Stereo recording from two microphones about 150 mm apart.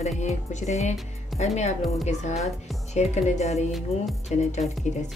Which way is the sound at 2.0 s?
50° left (ahead or behind).